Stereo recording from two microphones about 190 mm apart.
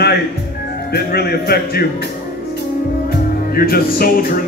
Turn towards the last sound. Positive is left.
turn(degrees=50)  # may be behind; listen again after turning